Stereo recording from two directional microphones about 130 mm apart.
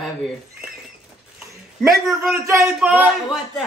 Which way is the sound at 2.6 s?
10° right (ahead or behind).